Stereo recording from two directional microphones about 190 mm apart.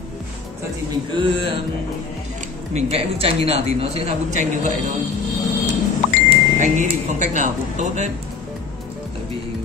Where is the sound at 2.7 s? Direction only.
30° right (ahead or behind).